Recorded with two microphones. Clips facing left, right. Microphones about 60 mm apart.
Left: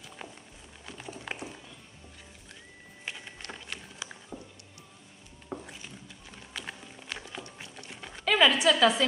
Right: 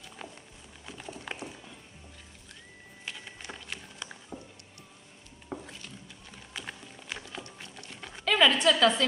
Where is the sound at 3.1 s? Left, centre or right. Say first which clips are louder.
Left 2 dB; centre.